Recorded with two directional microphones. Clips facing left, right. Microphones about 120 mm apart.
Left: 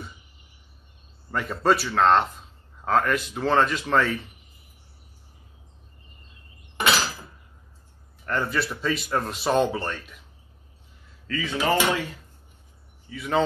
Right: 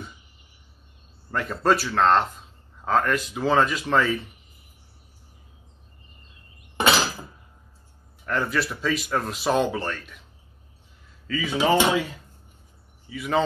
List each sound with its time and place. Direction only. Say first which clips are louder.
1.3 s a man's voice: even; centre (ahead or behind)
8.3 s a man's voice: right 1 dB; centre (ahead or behind)
11.2 s speech: right 2 dB; 5° right (ahead or behind)
11.5 s speech: right 3 dB; 20° right (ahead or behind)
13.1 s a man's voice: right 1 dB; 5° right (ahead or behind)